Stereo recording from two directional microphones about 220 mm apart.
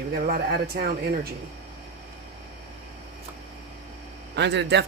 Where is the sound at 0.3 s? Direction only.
45° right (ahead or behind).